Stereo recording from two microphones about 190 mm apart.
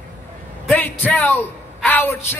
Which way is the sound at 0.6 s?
10° left (ahead or behind).